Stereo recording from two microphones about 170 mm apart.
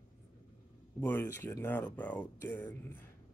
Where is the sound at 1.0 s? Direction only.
15° left (ahead or behind).